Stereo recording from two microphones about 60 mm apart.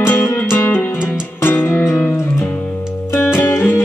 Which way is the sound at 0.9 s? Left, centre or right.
Centre.